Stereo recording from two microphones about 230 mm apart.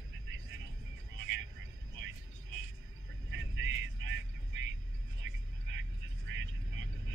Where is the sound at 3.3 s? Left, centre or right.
Right.